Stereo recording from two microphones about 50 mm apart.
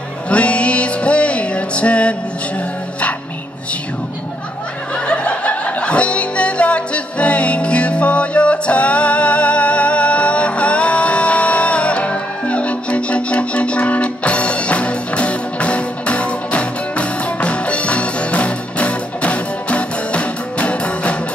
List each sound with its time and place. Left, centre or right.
0.3 s music: left
4.9 s music: left